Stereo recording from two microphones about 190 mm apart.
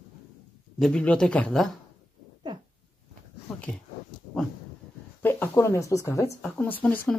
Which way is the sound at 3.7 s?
5° left (ahead or behind).